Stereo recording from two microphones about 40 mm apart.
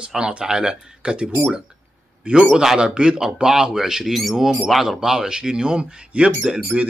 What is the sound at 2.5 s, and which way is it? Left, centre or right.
Speech, centre.